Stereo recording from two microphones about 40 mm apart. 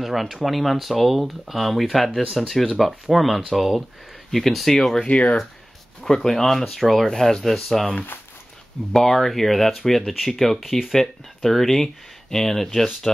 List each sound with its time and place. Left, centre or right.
0.0 s speech: centre
5.0 s speech: left
5.9 s speech: centre
8.9 s speech: centre
10.6 s speech: centre
10.9 s speech: centre